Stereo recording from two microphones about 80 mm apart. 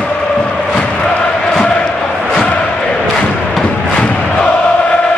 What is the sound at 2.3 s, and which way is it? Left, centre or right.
Crowd, centre.